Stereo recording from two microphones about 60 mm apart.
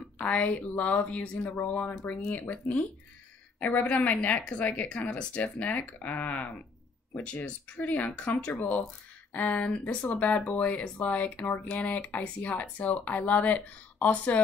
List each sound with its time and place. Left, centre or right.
0.2 s speech: left
3.8 s speech: left